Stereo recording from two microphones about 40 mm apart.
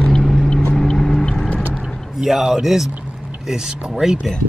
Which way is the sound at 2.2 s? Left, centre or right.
Centre.